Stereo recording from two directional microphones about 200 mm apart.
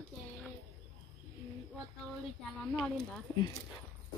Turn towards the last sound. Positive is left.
turn(degrees=5)  # may be behind; listen again after turning